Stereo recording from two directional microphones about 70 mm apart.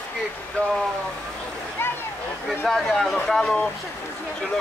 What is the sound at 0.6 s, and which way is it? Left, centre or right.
Speech, centre.